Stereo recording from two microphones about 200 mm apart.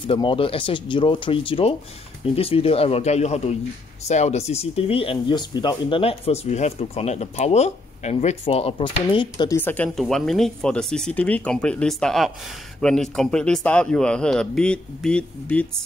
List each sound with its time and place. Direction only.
0.0 s speech: 25° left (ahead or behind)
9.6 s speech: 10° left (ahead or behind)